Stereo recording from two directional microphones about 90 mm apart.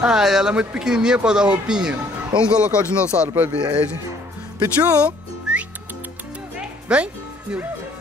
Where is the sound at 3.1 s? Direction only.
15° right (ahead or behind).